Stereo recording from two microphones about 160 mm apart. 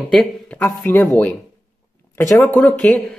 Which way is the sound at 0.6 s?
15° left (ahead or behind).